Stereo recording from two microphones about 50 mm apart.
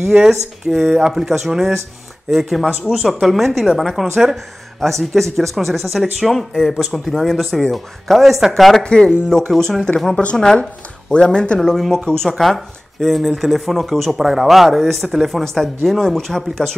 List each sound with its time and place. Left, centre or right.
0.1 s speech: centre
8.8 s speech: centre
11.8 s speech: centre
15.4 s speech: centre